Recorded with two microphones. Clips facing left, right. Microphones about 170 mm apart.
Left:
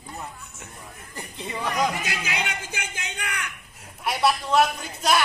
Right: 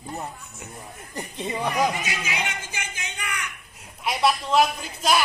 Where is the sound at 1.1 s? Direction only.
20° right (ahead or behind).